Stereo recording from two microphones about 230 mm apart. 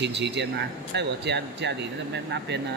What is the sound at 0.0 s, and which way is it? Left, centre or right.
Speech, right.